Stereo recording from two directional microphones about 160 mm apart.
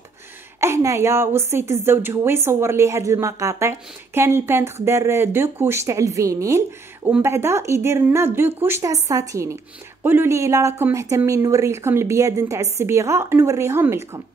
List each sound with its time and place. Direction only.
0.6 s a woman's voice: 15° right (ahead or behind)